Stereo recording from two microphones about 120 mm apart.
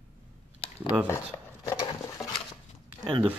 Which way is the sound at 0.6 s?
50° left (ahead or behind).